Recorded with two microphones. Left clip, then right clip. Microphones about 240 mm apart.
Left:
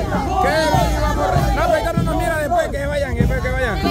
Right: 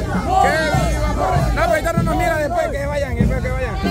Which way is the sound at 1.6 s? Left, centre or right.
Centre.